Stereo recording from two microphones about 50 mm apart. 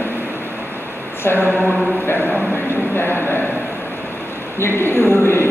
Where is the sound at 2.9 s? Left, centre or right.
Left.